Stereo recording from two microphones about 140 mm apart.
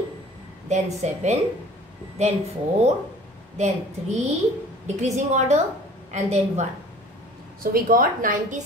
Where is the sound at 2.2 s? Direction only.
50° right (ahead or behind).